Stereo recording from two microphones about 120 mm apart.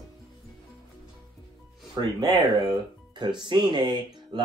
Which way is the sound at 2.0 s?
35° right (ahead or behind).